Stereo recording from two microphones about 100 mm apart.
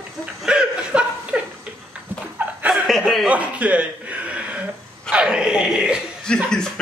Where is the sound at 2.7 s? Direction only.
Centre (ahead or behind).